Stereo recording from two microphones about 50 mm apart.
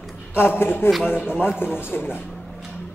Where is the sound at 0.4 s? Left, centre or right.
Left.